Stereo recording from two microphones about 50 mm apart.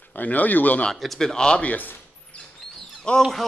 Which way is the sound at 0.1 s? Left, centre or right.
Left.